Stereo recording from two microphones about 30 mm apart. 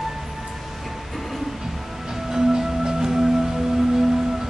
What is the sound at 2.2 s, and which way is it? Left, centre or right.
Music, centre.